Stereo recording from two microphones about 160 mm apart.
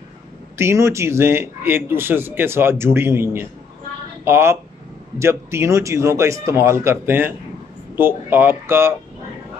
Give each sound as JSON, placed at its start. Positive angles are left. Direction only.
{"t": 0.6, "sound": "speech", "side_deg": -15}